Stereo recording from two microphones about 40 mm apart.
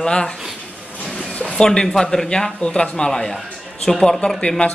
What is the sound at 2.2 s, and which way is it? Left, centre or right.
A man's voice, centre.